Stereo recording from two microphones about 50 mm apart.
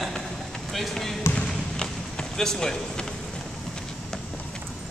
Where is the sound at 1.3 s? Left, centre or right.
Centre.